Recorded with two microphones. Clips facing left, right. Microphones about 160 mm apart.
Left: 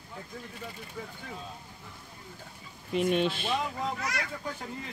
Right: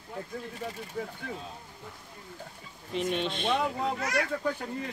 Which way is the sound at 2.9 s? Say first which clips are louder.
Left 3 dB; 5° left (ahead or behind).